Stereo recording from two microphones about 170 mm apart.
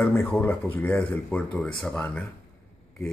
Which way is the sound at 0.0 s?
10° left (ahead or behind).